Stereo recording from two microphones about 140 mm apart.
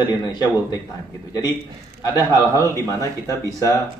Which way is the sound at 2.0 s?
25° left (ahead or behind).